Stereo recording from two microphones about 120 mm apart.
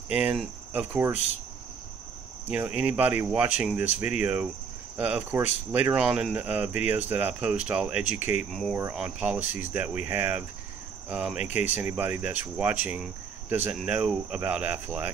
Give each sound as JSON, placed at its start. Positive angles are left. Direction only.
{"t": 0.1, "sound": "speech", "side_deg": -10}
{"t": 2.5, "sound": "speech", "side_deg": -10}
{"t": 5.9, "sound": "speech", "side_deg": -5}
{"t": 8.5, "sound": "cricket", "side_deg": 5}
{"t": 8.9, "sound": "speech", "side_deg": -10}